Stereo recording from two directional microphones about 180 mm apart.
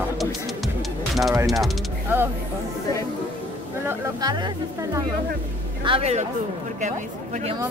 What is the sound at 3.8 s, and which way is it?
Speech, 15° right (ahead or behind).